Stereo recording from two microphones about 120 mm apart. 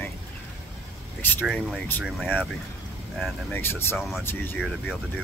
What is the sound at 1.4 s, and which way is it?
Speech, 5° right (ahead or behind).